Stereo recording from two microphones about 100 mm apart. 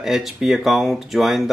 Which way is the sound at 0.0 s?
5° right (ahead or behind).